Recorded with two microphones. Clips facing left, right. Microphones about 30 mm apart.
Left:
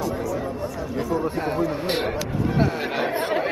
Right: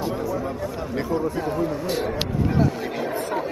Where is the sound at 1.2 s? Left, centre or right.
Left.